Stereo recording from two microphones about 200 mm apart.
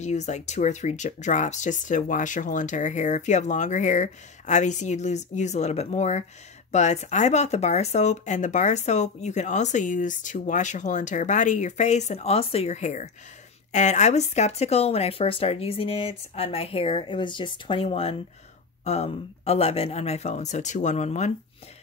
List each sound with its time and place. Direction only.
0.0 s speech: 35° left (ahead or behind)